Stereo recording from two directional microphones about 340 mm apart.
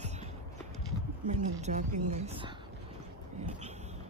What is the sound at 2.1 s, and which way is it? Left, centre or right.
Speech, centre.